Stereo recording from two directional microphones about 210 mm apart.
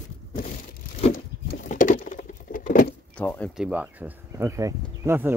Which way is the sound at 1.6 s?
40° left (ahead or behind).